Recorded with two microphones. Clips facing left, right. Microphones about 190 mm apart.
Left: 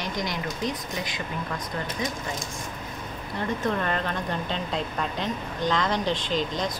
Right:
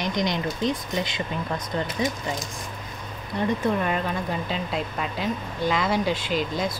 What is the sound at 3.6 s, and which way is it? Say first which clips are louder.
A woman's voice: right 2 dB; 10° right (ahead or behind).